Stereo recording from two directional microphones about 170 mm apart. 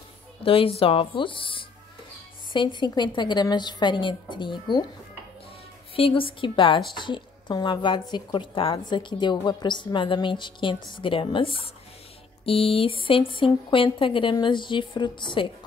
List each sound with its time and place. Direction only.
0.5 s a woman's voice: 35° left (ahead or behind)
5.9 s a woman's voice: 30° left (ahead or behind)